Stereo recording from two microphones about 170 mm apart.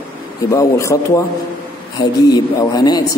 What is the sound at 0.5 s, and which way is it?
Speech, 20° left (ahead or behind).